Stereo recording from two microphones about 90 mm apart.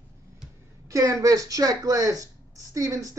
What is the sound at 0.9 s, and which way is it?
Speech, 35° right (ahead or behind).